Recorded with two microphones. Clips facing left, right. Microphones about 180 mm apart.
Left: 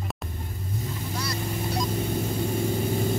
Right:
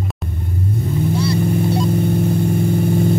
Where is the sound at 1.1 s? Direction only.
30° right (ahead or behind).